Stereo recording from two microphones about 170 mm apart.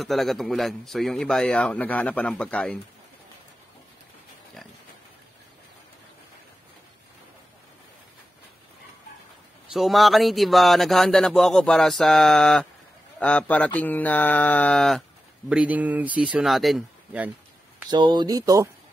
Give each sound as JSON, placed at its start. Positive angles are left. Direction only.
{"t": 0.0, "sound": "a man's voice", "side_deg": 0}
{"t": 9.7, "sound": "a man's voice", "side_deg": 0}
{"t": 15.5, "sound": "speech", "side_deg": -10}
{"t": 17.8, "sound": "speech", "side_deg": -25}